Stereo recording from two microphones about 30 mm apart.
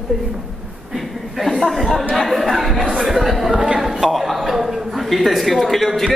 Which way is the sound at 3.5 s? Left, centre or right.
Right.